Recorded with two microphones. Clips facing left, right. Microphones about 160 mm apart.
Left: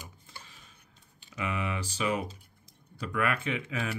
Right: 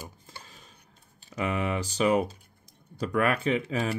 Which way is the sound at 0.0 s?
40° right (ahead or behind).